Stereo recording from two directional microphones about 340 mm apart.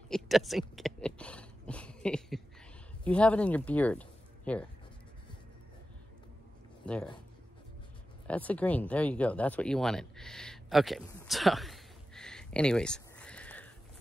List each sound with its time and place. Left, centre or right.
0.1 s a sound: centre
3.0 s speech: centre
6.8 s speech: centre
8.3 s speech: centre